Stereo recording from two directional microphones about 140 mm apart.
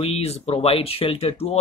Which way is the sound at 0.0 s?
45° left (ahead or behind).